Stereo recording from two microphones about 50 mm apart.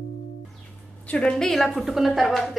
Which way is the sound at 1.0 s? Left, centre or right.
Left.